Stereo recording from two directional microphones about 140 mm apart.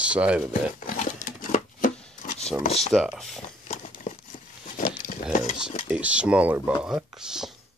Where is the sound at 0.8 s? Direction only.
75° left (ahead or behind).